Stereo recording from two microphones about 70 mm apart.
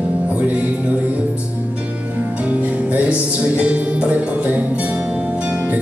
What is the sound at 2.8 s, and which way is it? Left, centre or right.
Music, centre.